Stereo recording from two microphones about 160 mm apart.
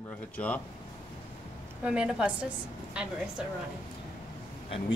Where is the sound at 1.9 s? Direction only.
5° right (ahead or behind).